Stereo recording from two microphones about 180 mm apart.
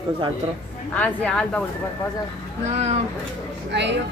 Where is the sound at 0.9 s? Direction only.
5° left (ahead or behind).